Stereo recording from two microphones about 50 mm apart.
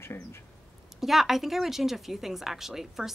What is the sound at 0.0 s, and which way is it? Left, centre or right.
Speech, left.